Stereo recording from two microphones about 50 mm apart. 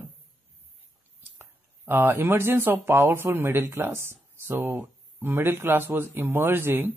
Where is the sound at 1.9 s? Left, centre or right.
Right.